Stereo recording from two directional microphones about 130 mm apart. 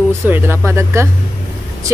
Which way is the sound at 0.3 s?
20° right (ahead or behind).